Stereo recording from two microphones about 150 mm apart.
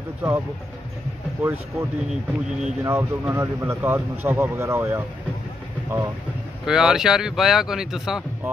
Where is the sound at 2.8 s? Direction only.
15° right (ahead or behind).